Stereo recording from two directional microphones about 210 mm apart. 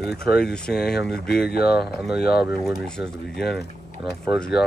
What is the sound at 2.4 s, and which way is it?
Speech, centre (ahead or behind).